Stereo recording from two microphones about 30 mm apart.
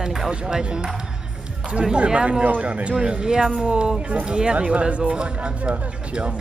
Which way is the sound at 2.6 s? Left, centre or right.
Right.